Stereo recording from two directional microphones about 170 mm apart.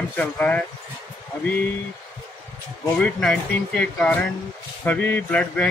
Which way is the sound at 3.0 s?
5° left (ahead or behind).